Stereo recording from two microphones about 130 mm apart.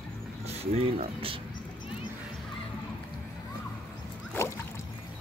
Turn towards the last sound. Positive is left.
turn(degrees=20)  # may be behind; listen again after turning